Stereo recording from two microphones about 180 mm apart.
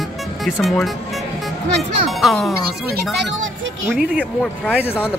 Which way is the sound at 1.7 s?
70° right (ahead or behind).